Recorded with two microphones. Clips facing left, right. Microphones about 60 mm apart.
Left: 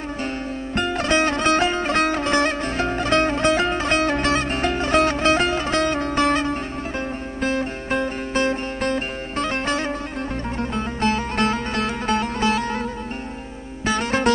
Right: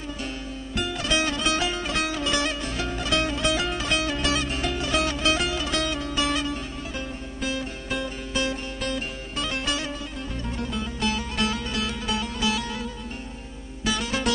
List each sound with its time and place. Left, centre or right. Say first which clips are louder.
0.7 s music: left 6 dB; left
13.8 s music: left 6 dB; left